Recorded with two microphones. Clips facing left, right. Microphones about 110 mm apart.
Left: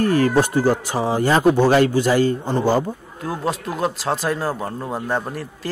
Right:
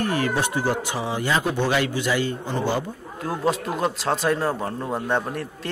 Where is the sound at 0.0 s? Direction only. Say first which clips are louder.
Left 7 dB; 40° left (ahead or behind).